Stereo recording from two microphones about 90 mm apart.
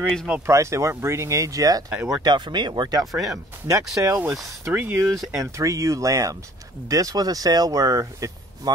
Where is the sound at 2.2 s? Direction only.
55° right (ahead or behind).